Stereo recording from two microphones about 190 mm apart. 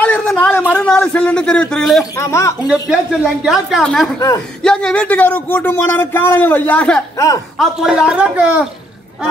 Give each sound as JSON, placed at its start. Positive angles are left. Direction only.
{"t": 0.0, "sound": "a sound", "side_deg": 5}
{"t": 0.7, "sound": "speech", "side_deg": 5}
{"t": 2.1, "sound": "speech", "side_deg": 15}
{"t": 2.7, "sound": "speech", "side_deg": -5}
{"t": 7.5, "sound": "speech", "side_deg": 0}